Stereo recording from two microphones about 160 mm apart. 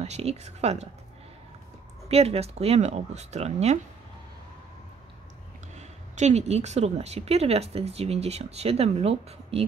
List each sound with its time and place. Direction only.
0.0 s speech: 40° right (ahead or behind)
2.0 s speech: 40° right (ahead or behind)
5.8 s a woman's voice: 45° right (ahead or behind)